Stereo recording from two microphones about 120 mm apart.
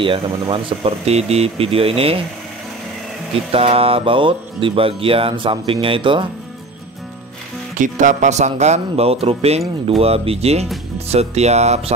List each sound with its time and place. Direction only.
0.0 s speech: 45° right (ahead or behind)
3.3 s speech: 55° right (ahead or behind)
7.7 s speech: 90° right; by 11.9 s 65° right (ahead or behind)